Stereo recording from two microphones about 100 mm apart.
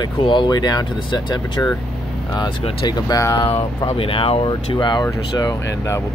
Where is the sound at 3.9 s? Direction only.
65° left (ahead or behind).